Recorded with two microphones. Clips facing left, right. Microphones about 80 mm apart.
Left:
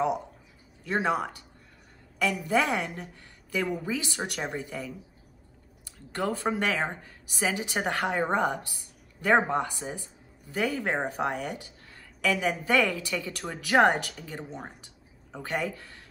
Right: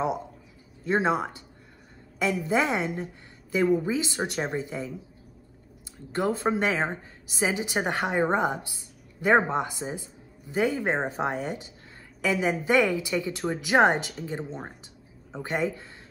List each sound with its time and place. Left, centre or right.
0.8 s a woman's voice: right
6.1 s a woman's voice: right